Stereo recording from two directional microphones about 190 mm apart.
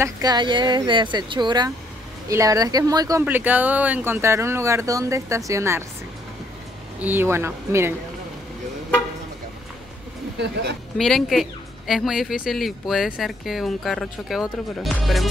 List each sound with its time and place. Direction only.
0.0 s a woman's voice: 20° right (ahead or behind)
7.0 s speech: 10° right (ahead or behind)
10.4 s speech: 60° right (ahead or behind)
11.0 s speech: centre (ahead or behind)